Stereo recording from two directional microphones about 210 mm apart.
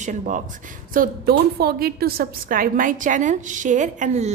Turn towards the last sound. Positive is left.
turn(degrees=-35)  # may be behind; listen again after turning